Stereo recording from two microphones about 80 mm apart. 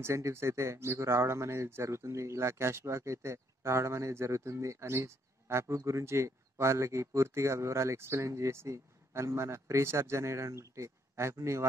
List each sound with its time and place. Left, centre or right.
0.0 s speech: right